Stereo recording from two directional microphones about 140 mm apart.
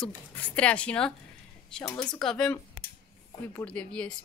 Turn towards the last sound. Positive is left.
turn(degrees=10)  # may be behind; listen again after turning